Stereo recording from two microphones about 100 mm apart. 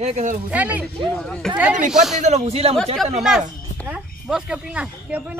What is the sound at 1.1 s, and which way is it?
Speech, 10° left (ahead or behind).